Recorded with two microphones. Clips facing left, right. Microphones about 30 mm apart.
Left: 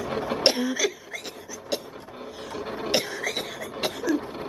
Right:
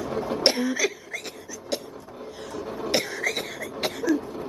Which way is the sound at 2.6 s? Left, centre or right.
Left.